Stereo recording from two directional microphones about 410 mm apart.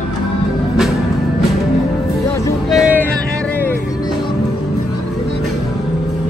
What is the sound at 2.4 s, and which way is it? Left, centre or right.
Music, centre.